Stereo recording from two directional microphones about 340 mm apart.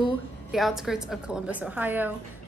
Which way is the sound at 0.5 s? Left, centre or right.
Centre.